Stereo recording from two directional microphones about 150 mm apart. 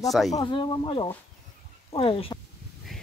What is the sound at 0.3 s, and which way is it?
Speech, 30° left (ahead or behind).